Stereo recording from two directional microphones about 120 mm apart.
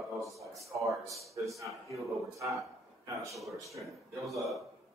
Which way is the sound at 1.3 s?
25° right (ahead or behind).